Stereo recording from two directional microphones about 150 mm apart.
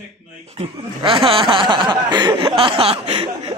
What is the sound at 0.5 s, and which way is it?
Speech, 35° right (ahead or behind).